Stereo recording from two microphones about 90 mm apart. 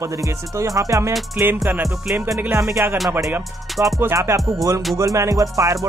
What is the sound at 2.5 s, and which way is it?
Music, 35° right (ahead or behind).